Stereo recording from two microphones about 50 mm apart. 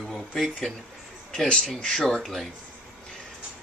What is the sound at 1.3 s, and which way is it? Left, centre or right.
Speech, left.